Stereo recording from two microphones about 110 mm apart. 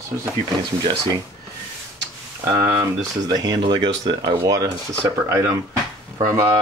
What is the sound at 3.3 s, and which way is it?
Speech, 40° right (ahead or behind).